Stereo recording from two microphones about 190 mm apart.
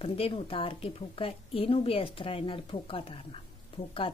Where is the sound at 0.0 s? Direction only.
30° left (ahead or behind).